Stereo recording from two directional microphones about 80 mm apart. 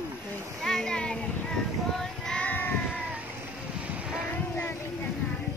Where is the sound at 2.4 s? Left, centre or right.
Left.